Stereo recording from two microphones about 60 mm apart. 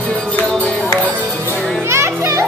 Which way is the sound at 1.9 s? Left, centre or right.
Right.